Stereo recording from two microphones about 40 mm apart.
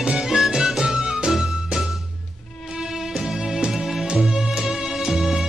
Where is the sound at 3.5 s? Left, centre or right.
Right.